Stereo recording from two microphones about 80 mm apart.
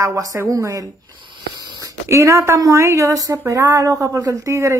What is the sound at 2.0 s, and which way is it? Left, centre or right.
Speech, right.